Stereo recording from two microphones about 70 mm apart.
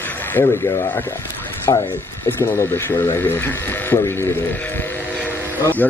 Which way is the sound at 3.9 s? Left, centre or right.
Left.